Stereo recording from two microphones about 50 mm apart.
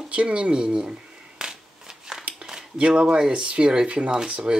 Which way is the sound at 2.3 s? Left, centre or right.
Right.